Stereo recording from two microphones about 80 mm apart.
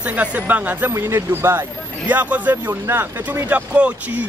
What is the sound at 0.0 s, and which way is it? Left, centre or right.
Speech, centre.